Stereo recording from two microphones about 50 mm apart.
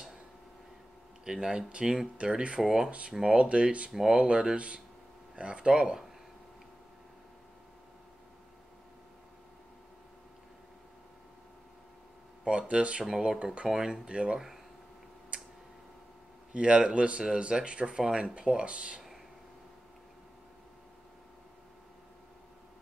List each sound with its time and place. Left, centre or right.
1.2 s speech: centre
3.3 s speech: right
3.9 s speech: centre
4.2 s speech: centre
12.4 s speech: right
13.7 s speech: centre
14.0 s speech: right
15.3 s tick-tock: right
16.5 s speech: centre